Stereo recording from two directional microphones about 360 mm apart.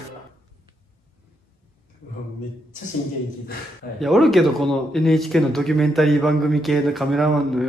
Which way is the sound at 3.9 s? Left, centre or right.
Centre.